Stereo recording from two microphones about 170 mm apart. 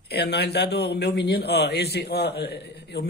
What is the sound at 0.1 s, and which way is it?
A man's voice, 75° left (ahead or behind).